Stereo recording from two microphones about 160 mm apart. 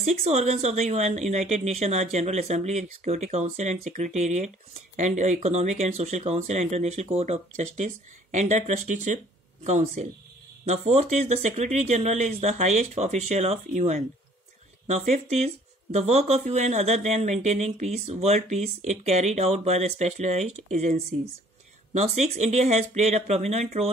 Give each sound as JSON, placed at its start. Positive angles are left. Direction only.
{"t": 0.0, "sound": "speech", "side_deg": -45}